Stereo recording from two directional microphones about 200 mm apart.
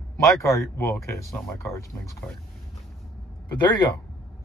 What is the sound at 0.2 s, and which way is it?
Speech, 15° left (ahead or behind).